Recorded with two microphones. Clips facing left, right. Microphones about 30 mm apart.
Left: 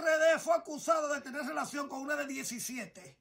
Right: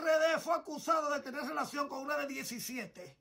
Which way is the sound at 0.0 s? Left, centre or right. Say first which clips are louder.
Left 2 dB; right.